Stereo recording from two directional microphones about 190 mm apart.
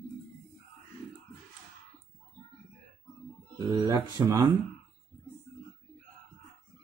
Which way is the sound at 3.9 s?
20° right (ahead or behind).